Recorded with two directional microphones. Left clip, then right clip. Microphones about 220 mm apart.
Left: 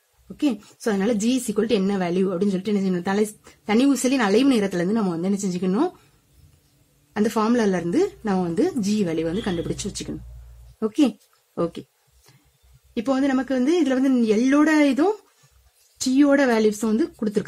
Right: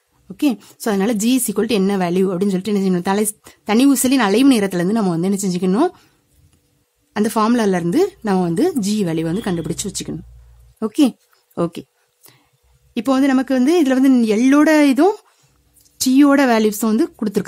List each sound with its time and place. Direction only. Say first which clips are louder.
0.4 s a woman's voice: right 5 dB; 45° right (ahead or behind)
7.2 s a woman's voice: right 4 dB; 40° right (ahead or behind)
12.9 s speech: right 6 dB; 40° right (ahead or behind)